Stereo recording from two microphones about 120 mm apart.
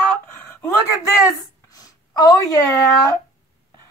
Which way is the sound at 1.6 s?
30° left (ahead or behind).